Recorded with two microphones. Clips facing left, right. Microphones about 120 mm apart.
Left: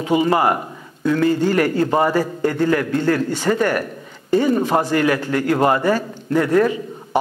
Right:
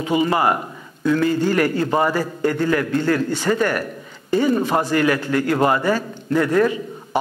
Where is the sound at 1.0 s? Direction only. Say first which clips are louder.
Left 1 dB; 40° left (ahead or behind).